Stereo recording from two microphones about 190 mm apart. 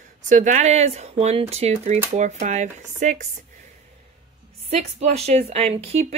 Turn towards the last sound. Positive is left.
turn(degrees=-30)  # may be behind; listen again after turning